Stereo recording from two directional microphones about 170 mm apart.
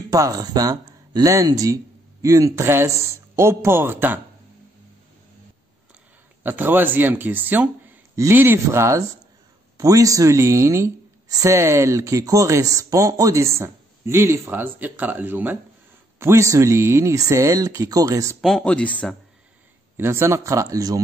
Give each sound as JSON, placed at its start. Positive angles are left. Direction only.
{"t": 0.1, "sound": "speech", "side_deg": -20}
{"t": 6.4, "sound": "speech", "side_deg": -10}
{"t": 18.4, "sound": "speech", "side_deg": 0}
{"t": 20.0, "sound": "speech", "side_deg": -15}